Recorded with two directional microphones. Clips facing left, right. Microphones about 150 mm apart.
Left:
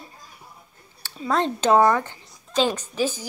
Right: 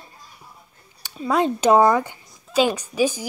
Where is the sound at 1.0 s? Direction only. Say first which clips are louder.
Right 3 dB; 10° right (ahead or behind).